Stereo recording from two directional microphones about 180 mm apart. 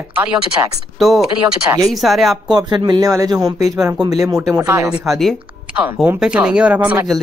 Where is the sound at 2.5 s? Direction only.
25° right (ahead or behind).